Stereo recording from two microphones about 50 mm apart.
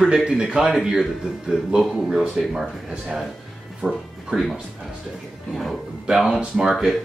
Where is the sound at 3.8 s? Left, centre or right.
Centre.